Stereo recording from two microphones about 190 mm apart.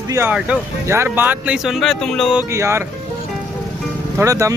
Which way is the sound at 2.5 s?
15° right (ahead or behind).